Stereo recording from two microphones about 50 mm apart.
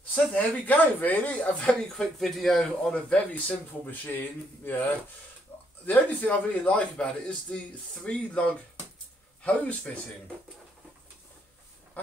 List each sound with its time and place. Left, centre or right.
0.1 s speech: left
2.0 s speech: centre
3.4 s speech: left
5.5 s a sound: left
5.9 s speech: left